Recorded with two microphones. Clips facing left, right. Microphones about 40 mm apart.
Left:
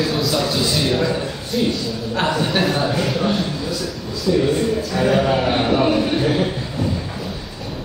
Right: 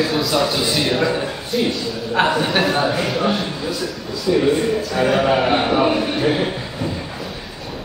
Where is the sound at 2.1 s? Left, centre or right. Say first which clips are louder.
Right 2 dB; centre.